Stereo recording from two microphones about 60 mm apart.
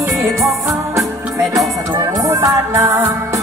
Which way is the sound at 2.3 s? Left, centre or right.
Right.